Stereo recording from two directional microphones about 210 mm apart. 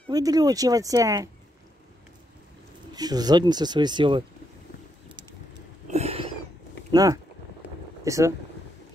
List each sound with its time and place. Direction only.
0.1 s speech: 15° right (ahead or behind)
2.9 s speech: 20° right (ahead or behind)
5.9 s a sound: 30° right (ahead or behind)
6.9 s speech: 15° right (ahead or behind)